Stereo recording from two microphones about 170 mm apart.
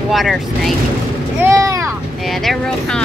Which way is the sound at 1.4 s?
20° right (ahead or behind).